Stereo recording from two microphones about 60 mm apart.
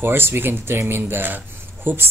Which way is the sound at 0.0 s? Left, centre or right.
Right.